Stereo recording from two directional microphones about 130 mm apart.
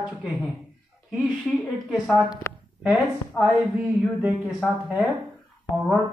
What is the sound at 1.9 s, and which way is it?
A woman's voice, 5° right (ahead or behind).